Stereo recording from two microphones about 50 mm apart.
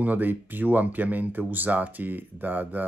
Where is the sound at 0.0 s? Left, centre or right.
Right.